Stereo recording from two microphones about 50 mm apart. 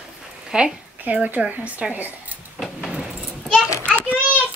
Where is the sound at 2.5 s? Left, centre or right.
Centre.